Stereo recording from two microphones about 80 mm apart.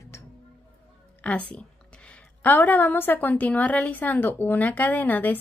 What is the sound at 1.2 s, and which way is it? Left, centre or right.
A woman's voice, centre.